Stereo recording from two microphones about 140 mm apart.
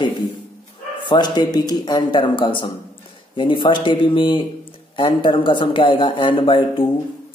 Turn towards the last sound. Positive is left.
turn(degrees=40)  # may be behind; listen again after turning